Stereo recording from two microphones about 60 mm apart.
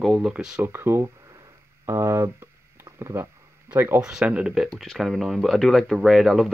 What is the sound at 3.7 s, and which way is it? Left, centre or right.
Speech, right.